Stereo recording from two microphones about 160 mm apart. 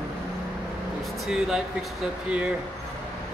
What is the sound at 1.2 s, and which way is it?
Speech, centre (ahead or behind).